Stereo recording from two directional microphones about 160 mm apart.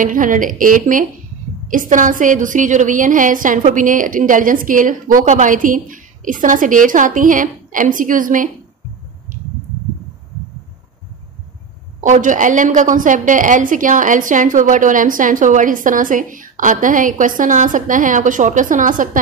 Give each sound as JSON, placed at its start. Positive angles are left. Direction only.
{"t": 0.0, "sound": "a woman's voice", "side_deg": -55}
{"t": 12.0, "sound": "a woman's voice", "side_deg": -50}